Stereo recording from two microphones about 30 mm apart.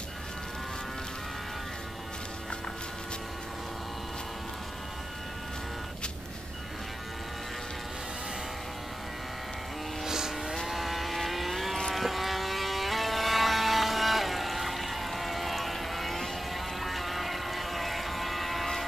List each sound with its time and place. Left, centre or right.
10.0 s vehicle: centre
10.5 s vehicle: centre